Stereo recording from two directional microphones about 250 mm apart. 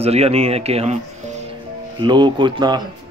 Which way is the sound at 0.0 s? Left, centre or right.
Right.